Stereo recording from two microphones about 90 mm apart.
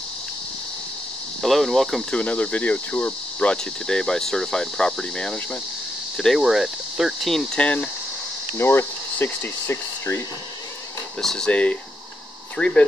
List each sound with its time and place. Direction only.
1.4 s speech: centre (ahead or behind)
2.1 s speech: 15° left (ahead or behind); by 7.4 s centre (ahead or behind)
7.5 s speech: 15° left (ahead or behind)
8.5 s speech: 25° left (ahead or behind)
11.1 s speech: 5° left (ahead or behind)